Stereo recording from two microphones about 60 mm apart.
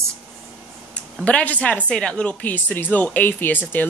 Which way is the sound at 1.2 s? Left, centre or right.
Left.